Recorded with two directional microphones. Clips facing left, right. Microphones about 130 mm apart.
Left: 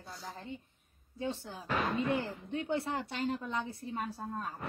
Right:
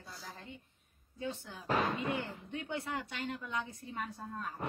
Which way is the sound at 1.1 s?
30° left (ahead or behind).